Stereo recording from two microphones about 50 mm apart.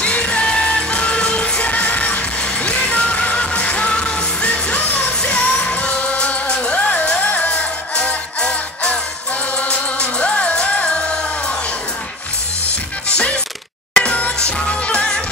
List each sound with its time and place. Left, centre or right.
0.0 s music: left
13.9 s music: left